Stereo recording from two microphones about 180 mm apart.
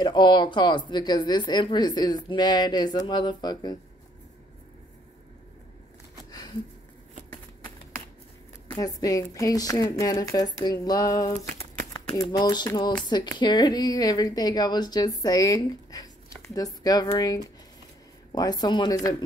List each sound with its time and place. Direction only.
0.0 s a woman's voice: 25° left (ahead or behind)
8.6 s a woman's voice: 20° left (ahead or behind)